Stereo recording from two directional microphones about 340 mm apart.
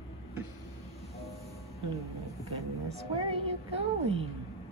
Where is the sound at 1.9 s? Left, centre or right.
Centre.